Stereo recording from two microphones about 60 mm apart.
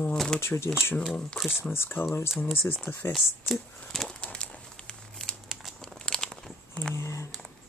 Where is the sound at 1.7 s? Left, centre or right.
Left.